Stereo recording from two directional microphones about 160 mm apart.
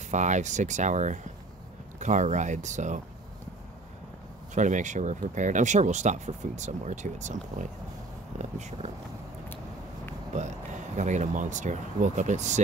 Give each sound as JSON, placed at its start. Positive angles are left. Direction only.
{"t": 0.1, "sound": "speech", "side_deg": -50}
{"t": 4.6, "sound": "speech", "side_deg": -50}
{"t": 10.3, "sound": "speech", "side_deg": -50}